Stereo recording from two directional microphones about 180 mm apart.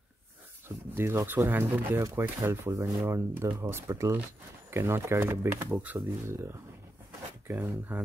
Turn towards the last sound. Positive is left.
turn(degrees=-10)  # may be behind; listen again after turning